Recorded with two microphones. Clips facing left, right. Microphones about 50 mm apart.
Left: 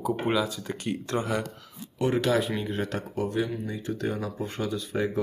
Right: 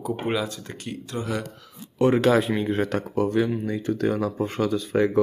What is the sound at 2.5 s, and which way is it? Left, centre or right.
Speech, right.